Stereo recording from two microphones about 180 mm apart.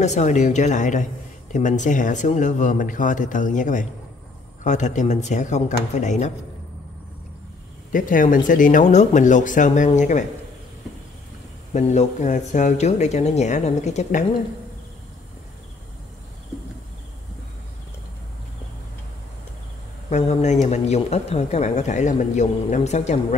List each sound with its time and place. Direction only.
0.0 s speech: 40° left (ahead or behind)
7.9 s speech: 50° left (ahead or behind)
11.7 s speech: 40° left (ahead or behind)
20.1 s speech: 40° left (ahead or behind)